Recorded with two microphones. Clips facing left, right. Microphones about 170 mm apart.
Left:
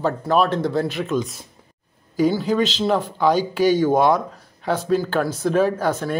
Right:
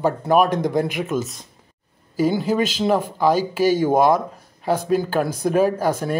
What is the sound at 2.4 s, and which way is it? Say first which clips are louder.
Speech: even; 10° right (ahead or behind).